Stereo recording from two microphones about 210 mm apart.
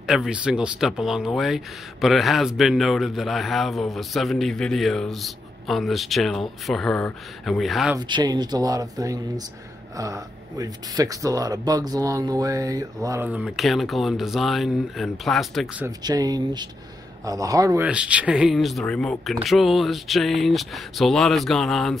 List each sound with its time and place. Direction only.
0.0 s speech: centre (ahead or behind)
8.1 s speech: 20° right (ahead or behind); by 15.7 s centre (ahead or behind)
15.8 s speech: 20° right (ahead or behind)
17.8 s speech: 5° right (ahead or behind)